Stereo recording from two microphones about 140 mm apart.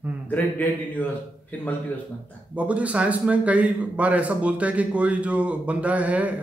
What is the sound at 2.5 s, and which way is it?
A man's voice, 10° right (ahead or behind).